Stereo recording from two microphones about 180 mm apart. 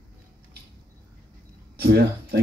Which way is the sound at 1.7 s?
60° right (ahead or behind).